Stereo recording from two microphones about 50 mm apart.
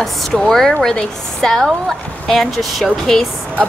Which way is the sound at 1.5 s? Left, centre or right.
Centre.